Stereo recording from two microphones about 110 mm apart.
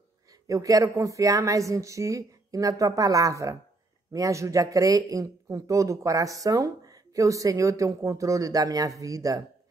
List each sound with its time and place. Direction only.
0.3 s a man's voice: 30° right (ahead or behind)